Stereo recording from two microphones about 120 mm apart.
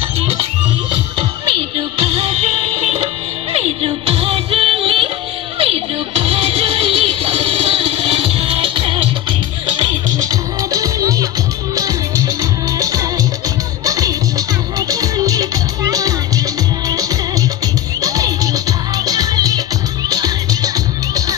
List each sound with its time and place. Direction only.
2.0 s music: 55° right (ahead or behind)
10.2 s music: 30° right (ahead or behind)
18.0 s music: 30° right (ahead or behind)